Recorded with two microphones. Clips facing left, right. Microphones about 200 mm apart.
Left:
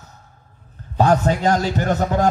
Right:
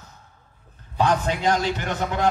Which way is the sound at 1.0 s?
40° left (ahead or behind).